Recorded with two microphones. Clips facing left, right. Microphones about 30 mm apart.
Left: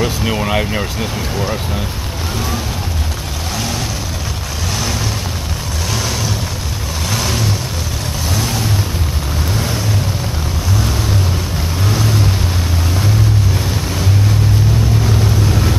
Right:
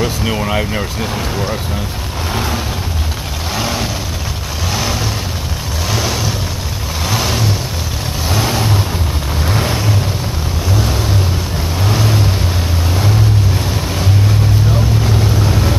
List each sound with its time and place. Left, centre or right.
0.0 s speech: centre
5.9 s vehicle: centre
11.9 s vehicle: centre
15.0 s vehicle: centre